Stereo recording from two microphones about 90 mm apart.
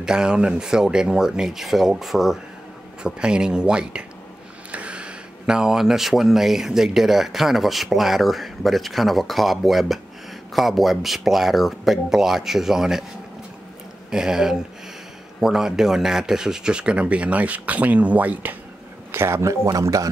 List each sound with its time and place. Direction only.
0.0 s speech: 10° right (ahead or behind)
14.1 s speech: 5° right (ahead or behind)
19.1 s speech: 30° right (ahead or behind)